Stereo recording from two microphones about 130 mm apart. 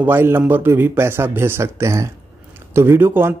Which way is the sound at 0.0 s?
15° right (ahead or behind).